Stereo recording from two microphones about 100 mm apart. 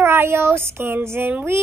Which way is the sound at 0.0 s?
25° right (ahead or behind).